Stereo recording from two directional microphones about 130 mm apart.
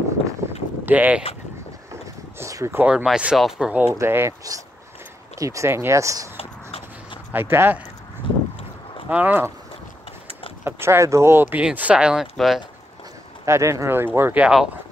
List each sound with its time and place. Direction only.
0.8 s speech: 15° right (ahead or behind)
2.3 s speech: 20° right (ahead or behind)
2.9 s speech: 5° right (ahead or behind)
3.8 s speech: 20° right (ahead or behind)
6.3 s a sound: 45° left (ahead or behind)
7.3 s speech: 15° right (ahead or behind)
9.1 s speech: 15° right (ahead or behind)
10.6 s speech: 20° right (ahead or behind); by 12.6 s 5° right (ahead or behind)
13.5 s speech: 25° right (ahead or behind); by 14.7 s 5° right (ahead or behind)